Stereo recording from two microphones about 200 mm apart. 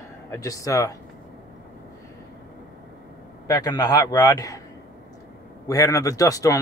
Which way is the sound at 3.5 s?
20° left (ahead or behind).